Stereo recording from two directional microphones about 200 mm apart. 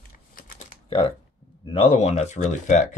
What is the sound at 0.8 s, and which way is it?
Speech, 25° left (ahead or behind).